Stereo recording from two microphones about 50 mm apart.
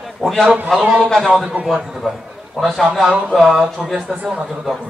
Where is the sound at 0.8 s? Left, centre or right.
Right.